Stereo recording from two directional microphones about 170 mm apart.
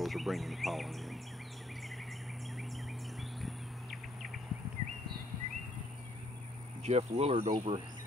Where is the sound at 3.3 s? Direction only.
Centre (ahead or behind).